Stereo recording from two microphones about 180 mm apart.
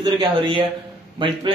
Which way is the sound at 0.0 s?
25° right (ahead or behind).